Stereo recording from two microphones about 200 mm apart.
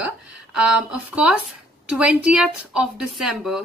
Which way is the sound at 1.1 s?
5° right (ahead or behind).